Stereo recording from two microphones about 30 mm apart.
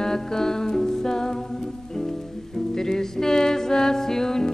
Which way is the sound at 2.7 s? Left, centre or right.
Centre.